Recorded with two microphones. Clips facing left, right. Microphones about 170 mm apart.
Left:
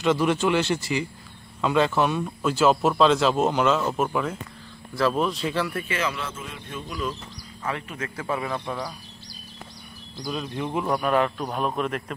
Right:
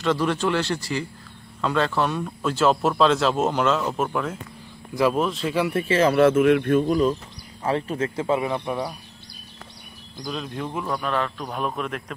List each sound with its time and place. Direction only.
0.0 s speech: 15° left (ahead or behind)
4.9 s speech: 15° right (ahead or behind)
5.2 s speech: centre (ahead or behind)
5.7 s speech: 30° right (ahead or behind)
6.1 s speech: 65° right (ahead or behind)
7.6 s speech: 30° right (ahead or behind); by 8.7 s 15° right (ahead or behind)
10.2 s speech: centre (ahead or behind)
10.7 s speech: 20° left (ahead or behind); by 12.0 s centre (ahead or behind)